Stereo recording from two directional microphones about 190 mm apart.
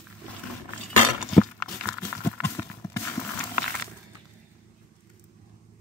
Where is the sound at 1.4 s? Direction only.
15° left (ahead or behind).